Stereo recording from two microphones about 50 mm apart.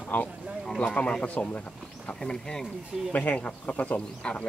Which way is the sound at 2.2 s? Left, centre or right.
Centre.